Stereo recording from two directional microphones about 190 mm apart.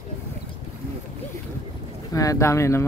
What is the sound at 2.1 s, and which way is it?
Speech, 15° left (ahead or behind).